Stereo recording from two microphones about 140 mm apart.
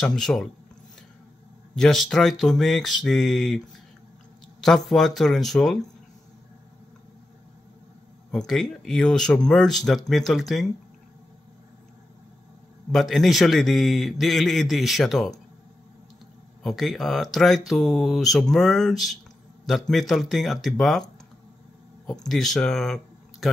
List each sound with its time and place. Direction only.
0.0 s speech: 5° left (ahead or behind)
1.8 s speech: 5° left (ahead or behind)
8.3 s speech: 5° left (ahead or behind)
12.9 s speech: centre (ahead or behind)
16.6 s speech: centre (ahead or behind)
22.0 s speech: 5° left (ahead or behind)